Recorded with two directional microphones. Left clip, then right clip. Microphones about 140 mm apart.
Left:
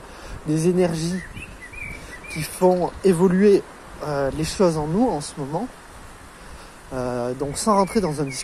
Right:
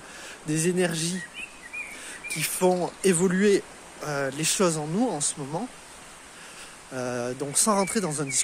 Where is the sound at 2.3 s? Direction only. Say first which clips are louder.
Left 5 dB; 20° right (ahead or behind).